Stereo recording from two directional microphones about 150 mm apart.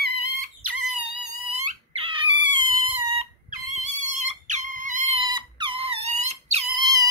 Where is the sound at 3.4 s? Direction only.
55° right (ahead or behind).